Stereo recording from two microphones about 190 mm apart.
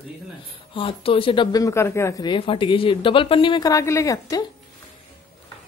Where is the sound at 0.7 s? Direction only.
30° left (ahead or behind).